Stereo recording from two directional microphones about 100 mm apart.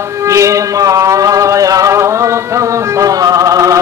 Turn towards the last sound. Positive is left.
turn(degrees=-35)  # may be behind; listen again after turning